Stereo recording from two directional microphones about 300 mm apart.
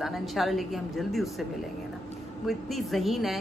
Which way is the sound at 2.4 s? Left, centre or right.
Centre.